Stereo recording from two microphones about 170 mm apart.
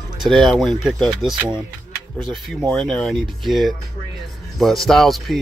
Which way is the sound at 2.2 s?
Centre (ahead or behind).